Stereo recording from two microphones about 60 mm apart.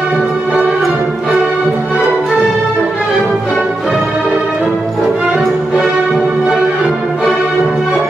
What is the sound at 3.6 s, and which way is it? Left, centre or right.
Music, centre.